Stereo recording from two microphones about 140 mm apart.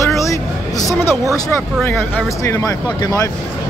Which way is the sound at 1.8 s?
15° left (ahead or behind).